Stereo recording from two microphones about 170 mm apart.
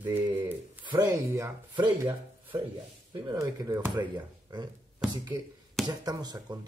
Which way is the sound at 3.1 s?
25° right (ahead or behind).